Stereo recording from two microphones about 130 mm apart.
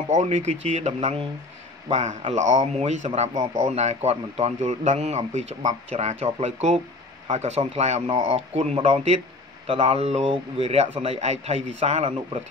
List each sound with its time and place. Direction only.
0.1 s a man's voice: 60° right (ahead or behind)